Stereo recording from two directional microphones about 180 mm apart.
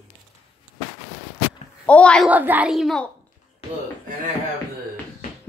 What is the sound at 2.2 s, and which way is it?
Speech, 10° right (ahead or behind).